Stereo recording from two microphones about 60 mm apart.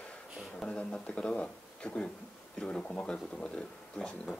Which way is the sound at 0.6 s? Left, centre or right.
Centre.